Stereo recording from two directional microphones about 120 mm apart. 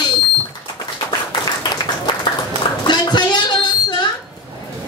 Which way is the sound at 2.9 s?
40° left (ahead or behind).